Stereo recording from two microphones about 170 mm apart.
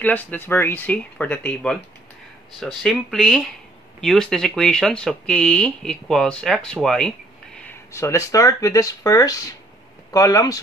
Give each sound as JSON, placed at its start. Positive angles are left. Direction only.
{"t": 0.0, "sound": "speech", "side_deg": 10}
{"t": 7.6, "sound": "speech", "side_deg": 15}